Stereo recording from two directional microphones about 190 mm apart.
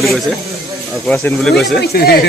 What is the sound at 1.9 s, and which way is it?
Speech, 55° left (ahead or behind).